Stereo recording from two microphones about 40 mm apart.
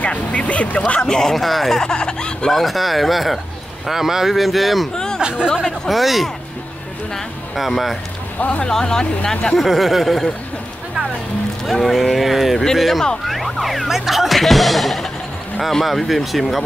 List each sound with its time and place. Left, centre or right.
0.0 s speech: left
1.0 s speech: centre
1.3 s speech: centre
1.8 s speech: centre
2.5 s speech: centre
4.9 s chatter: centre
5.2 s speech: right
5.7 s speech: centre
7.5 s speech: centre
8.6 s speech: centre
9.6 s speech: centre
11.6 s speech: centre